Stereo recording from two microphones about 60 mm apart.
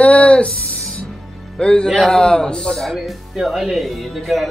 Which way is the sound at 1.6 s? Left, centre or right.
Centre.